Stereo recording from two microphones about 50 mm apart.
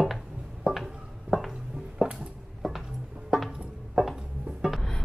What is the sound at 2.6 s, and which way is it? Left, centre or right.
Music, centre.